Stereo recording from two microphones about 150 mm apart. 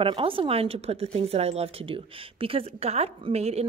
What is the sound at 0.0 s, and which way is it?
A woman's voice, 35° right (ahead or behind).